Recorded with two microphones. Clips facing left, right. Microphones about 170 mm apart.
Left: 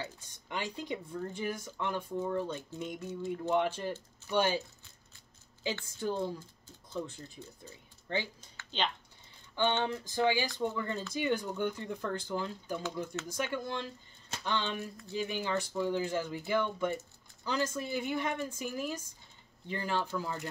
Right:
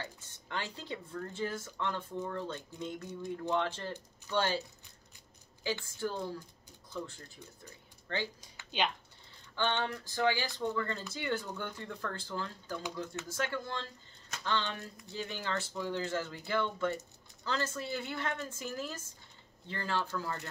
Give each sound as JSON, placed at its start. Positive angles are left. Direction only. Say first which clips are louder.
{"t": 0.0, "sound": "speech", "louder": "left 2 dB", "side_deg": 15}
{"t": 5.9, "sound": "speech", "louder": "left 3 dB", "side_deg": 20}
{"t": 8.4, "sound": "speech", "louder": "right 1 dB", "side_deg": -10}
{"t": 9.6, "sound": "speech", "louder": "left 3 dB", "side_deg": 20}